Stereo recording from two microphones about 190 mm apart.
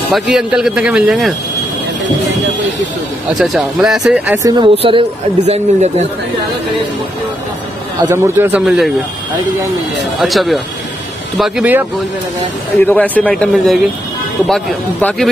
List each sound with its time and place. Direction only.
0.1 s speech: 5° right (ahead or behind)
3.3 s speech: centre (ahead or behind)
4.4 s speech: 20° right (ahead or behind)
5.5 s speech: 35° right (ahead or behind)
8.0 s a man's voice: 15° right (ahead or behind)
10.2 s speech: centre (ahead or behind)
12.8 s speech: 10° left (ahead or behind)